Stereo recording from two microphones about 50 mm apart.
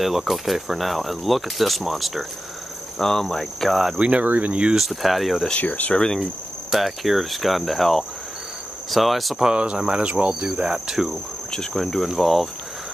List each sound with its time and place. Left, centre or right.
0.0 s speech: centre
3.0 s cricket: centre
4.0 s speech: right
4.7 s speech: centre
5.6 s speech: left
6.7 s speech: centre
9.5 s speech: right
10.5 s cricket: centre
11.5 s speech: centre